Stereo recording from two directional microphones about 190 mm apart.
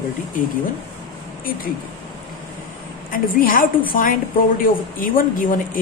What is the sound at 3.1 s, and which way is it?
Speech, 45° left (ahead or behind).